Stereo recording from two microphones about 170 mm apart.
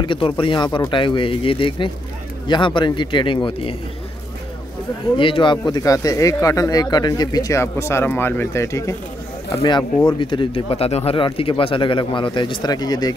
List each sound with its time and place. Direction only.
0.0 s speech: 30° left (ahead or behind)
5.1 s speech: 30° left (ahead or behind)